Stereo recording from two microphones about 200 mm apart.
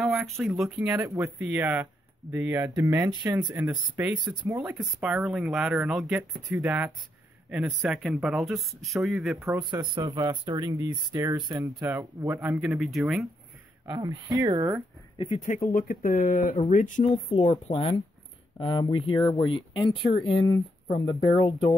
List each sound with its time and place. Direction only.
0.0 s speech: centre (ahead or behind)
4.2 s speech: 20° right (ahead or behind)
5.0 s speech: 5° right (ahead or behind)
6.5 s speech: 10° right (ahead or behind)
7.8 s speech: centre (ahead or behind)
9.4 s speech: 20° right (ahead or behind)
12.6 s speech: centre (ahead or behind)
13.8 s speech: 20° right (ahead or behind)
15.1 s speech: 30° left (ahead or behind)
15.7 s speech: 45° left (ahead or behind); by 21.2 s 25° left (ahead or behind)